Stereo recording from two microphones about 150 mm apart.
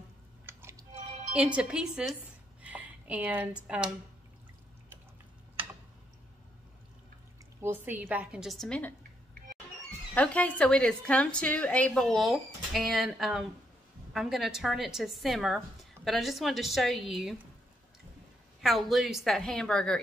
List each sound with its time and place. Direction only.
0.5 s a sound: 15° right (ahead or behind)
1.3 s a woman's voice: 5° right (ahead or behind)
7.6 s a woman's voice: 10° right (ahead or behind); by 8.9 s 5° left (ahead or behind)
10.1 s a woman's voice: 10° left (ahead or behind)
18.6 s a woman's voice: centre (ahead or behind)